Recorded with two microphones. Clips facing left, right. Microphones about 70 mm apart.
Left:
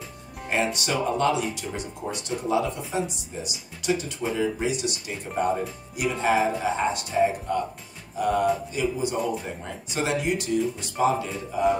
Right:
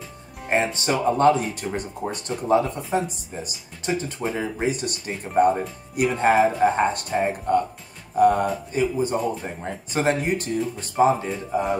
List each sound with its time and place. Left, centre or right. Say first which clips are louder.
0.7 s speech: right 4 dB; right